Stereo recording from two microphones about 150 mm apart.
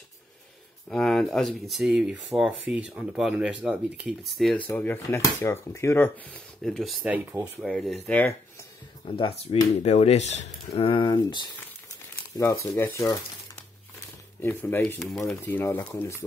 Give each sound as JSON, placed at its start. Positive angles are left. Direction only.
{"t": 0.8, "sound": "speech", "side_deg": 5}
{"t": 4.6, "sound": "speech", "side_deg": 15}
{"t": 8.2, "sound": "speech", "side_deg": 20}
{"t": 9.0, "sound": "speech", "side_deg": 35}
{"t": 12.6, "sound": "speech", "side_deg": 20}
{"t": 14.4, "sound": "speech", "side_deg": 15}
{"t": 15.0, "sound": "speech", "side_deg": 0}
{"t": 15.4, "sound": "speech", "side_deg": 15}